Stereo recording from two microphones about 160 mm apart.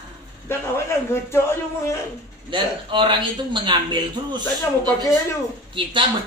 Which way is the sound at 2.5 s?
30° right (ahead or behind).